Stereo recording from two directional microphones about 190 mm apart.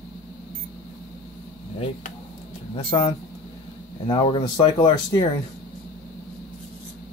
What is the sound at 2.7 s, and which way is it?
Speech, 30° left (ahead or behind).